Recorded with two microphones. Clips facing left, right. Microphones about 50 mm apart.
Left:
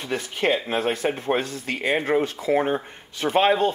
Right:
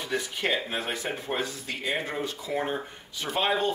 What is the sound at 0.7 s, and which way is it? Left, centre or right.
Speech, left.